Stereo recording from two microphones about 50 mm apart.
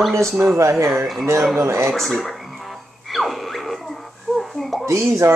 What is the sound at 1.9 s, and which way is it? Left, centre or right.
Speech, centre.